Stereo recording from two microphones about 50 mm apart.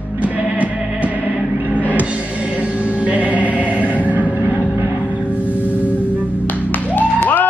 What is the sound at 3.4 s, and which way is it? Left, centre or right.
Music, left.